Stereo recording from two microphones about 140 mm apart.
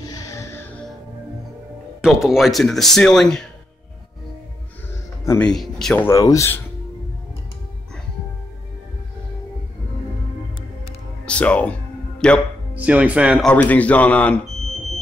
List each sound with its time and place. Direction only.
0.0 s music: 25° left (ahead or behind)
2.0 s speech: centre (ahead or behind)
5.4 s speech: 5° left (ahead or behind)
6.0 s speech: 20° left (ahead or behind)
11.2 s speech: 10° left (ahead or behind)
12.7 s speech: 10° right (ahead or behind)
13.4 s a man's voice: 10° left (ahead or behind)